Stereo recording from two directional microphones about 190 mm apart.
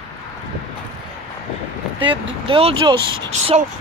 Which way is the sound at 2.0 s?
25° right (ahead or behind).